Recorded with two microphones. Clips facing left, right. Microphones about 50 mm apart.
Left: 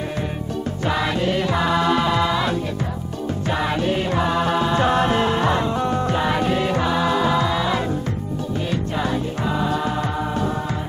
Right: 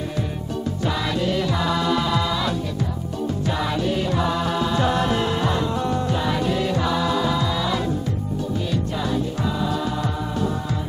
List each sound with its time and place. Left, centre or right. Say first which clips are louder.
0.8 s music: left 3 dB; left